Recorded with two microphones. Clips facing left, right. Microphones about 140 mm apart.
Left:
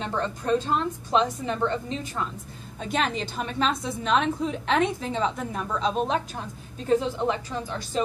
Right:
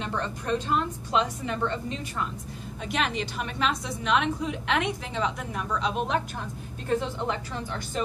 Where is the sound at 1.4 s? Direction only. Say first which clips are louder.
Left 2 dB; 30° left (ahead or behind).